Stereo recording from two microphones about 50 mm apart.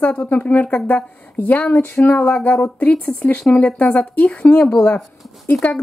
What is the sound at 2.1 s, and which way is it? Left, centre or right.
A woman's voice, left.